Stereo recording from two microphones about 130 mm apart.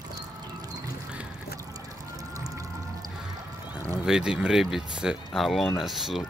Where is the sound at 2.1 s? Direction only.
25° right (ahead or behind).